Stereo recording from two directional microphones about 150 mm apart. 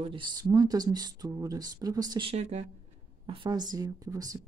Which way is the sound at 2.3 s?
50° right (ahead or behind).